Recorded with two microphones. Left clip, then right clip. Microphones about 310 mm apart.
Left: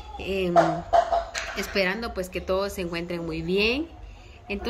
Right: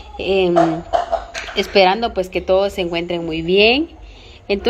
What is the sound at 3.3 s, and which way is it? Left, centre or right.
Speech, right.